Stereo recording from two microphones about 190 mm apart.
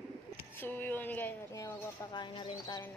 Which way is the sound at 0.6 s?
10° left (ahead or behind).